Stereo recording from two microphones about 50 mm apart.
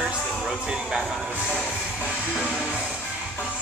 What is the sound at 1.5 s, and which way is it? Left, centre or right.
Train, centre.